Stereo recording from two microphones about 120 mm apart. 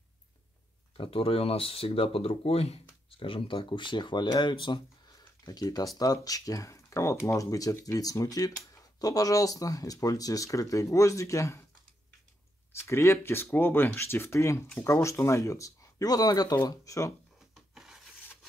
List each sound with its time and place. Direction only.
0.9 s speech: 50° left (ahead or behind)
3.1 s speech: 45° left (ahead or behind); by 11.6 s 25° left (ahead or behind)
12.7 s speech: 20° left (ahead or behind)
17.6 s rub: 5° right (ahead or behind)